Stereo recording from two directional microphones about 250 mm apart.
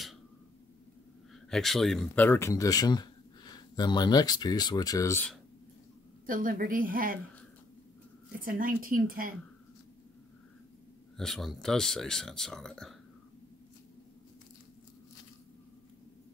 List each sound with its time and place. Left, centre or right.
1.5 s speech: centre
6.2 s a woman's voice: right
8.5 s a woman's voice: right
11.1 s speech: centre